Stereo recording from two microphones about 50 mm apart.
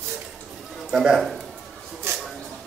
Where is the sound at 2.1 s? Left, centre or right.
Right.